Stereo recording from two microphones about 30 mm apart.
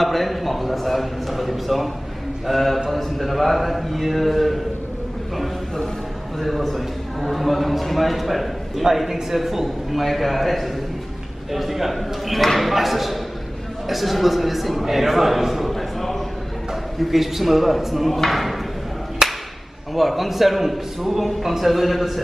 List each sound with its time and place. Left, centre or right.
0.0 s a man's voice: centre
6.4 s a man's voice: centre
10.0 s a man's voice: centre
17.0 s a man's voice: centre
19.2 s a sound: centre
19.9 s a man's voice: centre